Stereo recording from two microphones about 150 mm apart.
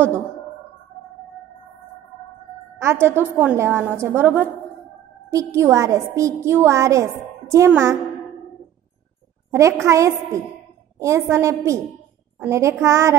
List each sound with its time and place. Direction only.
2.8 s a woman's voice: 15° right (ahead or behind)
9.5 s a child's voice: 20° right (ahead or behind)